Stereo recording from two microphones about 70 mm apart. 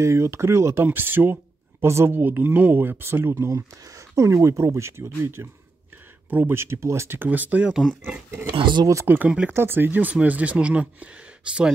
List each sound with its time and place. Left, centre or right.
0.0 s speech: right
0.8 s speech: right
3.4 s speech: right
7.2 s speech: right
9.0 s speech: right